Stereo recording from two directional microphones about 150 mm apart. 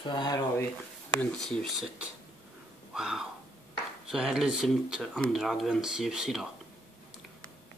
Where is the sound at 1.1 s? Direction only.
5° left (ahead or behind).